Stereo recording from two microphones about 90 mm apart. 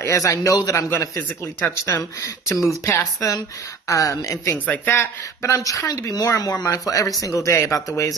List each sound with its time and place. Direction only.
0.0 s a man's voice: 35° left (ahead or behind)
4.6 s a man's voice: 25° left (ahead or behind)